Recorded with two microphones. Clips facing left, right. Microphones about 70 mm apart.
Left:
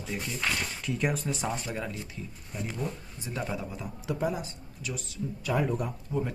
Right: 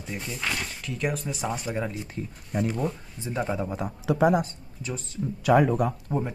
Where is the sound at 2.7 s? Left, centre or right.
Right.